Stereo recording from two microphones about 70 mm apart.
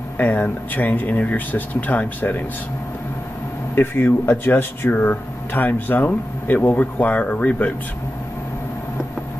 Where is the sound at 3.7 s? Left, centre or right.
Left.